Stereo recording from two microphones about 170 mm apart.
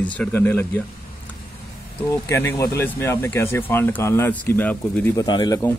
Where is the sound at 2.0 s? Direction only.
15° left (ahead or behind).